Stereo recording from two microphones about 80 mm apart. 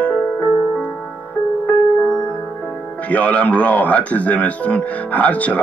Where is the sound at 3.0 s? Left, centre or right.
Centre.